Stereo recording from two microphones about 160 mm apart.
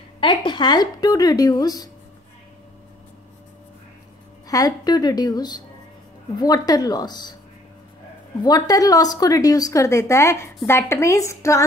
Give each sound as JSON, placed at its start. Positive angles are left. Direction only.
{"t": 0.2, "sound": "speech", "side_deg": 30}
{"t": 4.5, "sound": "speech", "side_deg": 20}
{"t": 8.4, "sound": "speech", "side_deg": 25}